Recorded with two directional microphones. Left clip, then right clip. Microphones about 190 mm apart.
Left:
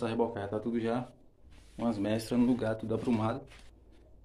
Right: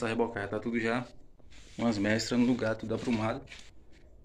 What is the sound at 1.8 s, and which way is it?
Speech, 20° right (ahead or behind).